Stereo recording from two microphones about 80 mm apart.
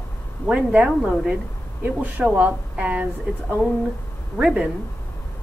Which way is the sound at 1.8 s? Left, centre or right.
Right.